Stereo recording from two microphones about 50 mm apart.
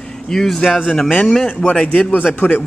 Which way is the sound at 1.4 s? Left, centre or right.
Left.